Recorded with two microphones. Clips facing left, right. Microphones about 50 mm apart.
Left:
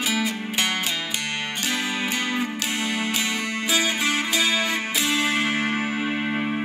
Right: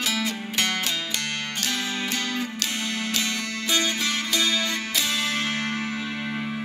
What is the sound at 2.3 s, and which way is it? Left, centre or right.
Music, centre.